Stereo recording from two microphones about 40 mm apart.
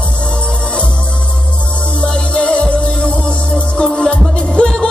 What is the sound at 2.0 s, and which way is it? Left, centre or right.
Music, left.